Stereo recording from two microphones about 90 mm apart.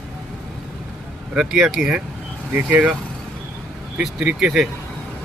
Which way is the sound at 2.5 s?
20° right (ahead or behind).